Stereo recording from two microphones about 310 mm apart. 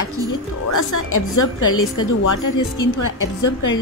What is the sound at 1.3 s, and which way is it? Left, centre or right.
A woman's voice, left.